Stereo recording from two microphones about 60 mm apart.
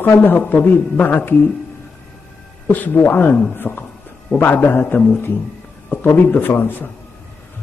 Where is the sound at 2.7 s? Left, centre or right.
Left.